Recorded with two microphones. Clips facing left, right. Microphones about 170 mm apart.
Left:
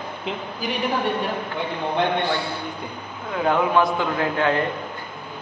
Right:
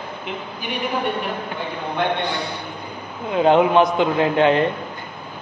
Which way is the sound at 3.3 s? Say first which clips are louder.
Right 5 dB; 20° right (ahead or behind).